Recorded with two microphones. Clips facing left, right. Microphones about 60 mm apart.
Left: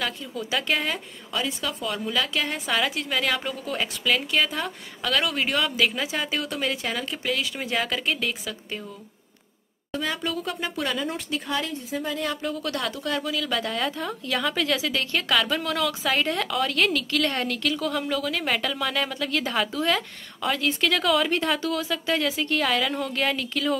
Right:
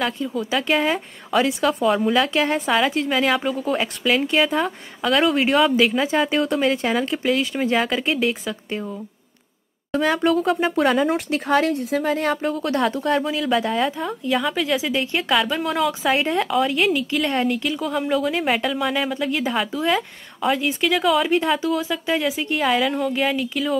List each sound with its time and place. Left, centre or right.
0.0 s speech: centre
1.3 s a woman's voice: right
2.0 s speech: right
3.1 s speech: centre
6.7 s speech: right
7.0 s speech: centre
10.0 s a woman's voice: right
10.4 s speech: centre
11.1 s speech: right
11.7 s speech: right
12.1 s speech: right
13.5 s speech: centre
14.8 s speech: centre
18.5 s speech: centre